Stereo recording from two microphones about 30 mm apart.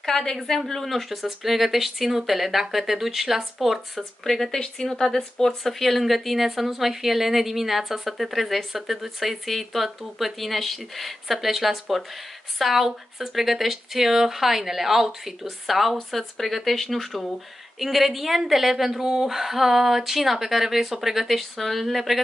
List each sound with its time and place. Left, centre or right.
0.0 s a woman's voice: centre
0.7 s speech: centre